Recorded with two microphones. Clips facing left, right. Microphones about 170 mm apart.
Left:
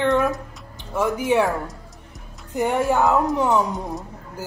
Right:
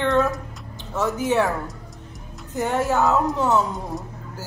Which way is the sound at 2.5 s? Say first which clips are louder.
Left 2 dB; 15° left (ahead or behind).